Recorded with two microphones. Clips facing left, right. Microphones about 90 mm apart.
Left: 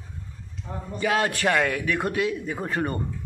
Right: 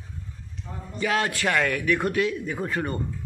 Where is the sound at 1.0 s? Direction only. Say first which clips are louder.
Left 1 dB; 25° left (ahead or behind).